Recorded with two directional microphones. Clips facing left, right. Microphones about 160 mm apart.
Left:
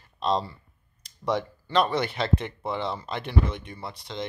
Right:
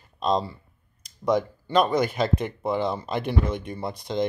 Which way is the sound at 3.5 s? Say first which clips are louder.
Right 6 dB; 45° right (ahead or behind).